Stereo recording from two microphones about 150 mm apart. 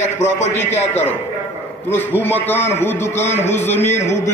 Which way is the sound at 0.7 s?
45° left (ahead or behind).